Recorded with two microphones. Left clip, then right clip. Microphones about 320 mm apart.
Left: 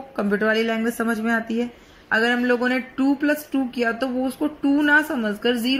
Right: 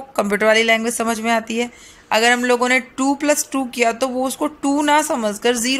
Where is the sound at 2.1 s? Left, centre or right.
Centre.